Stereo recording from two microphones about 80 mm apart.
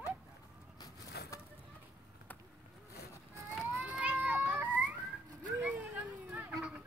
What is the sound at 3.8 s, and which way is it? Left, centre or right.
Children playing, centre.